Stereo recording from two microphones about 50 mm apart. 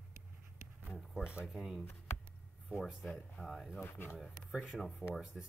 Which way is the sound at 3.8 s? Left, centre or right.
Left.